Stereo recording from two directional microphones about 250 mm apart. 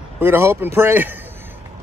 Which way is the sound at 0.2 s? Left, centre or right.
Centre.